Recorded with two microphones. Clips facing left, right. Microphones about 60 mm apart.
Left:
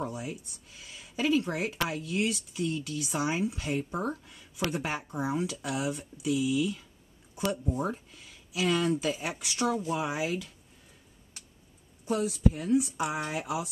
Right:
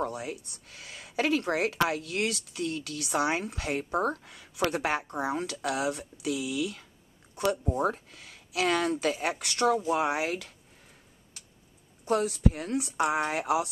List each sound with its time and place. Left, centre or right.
0.0 s speech: right
12.0 s speech: right